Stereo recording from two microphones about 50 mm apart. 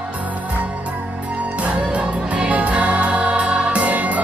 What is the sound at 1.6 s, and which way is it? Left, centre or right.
Music, right.